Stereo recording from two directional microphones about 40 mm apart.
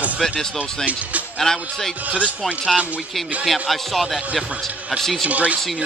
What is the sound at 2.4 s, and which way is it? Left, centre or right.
Speech, centre.